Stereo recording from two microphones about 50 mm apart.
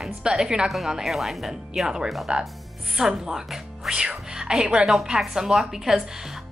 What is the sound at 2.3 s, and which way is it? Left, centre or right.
Speech, right.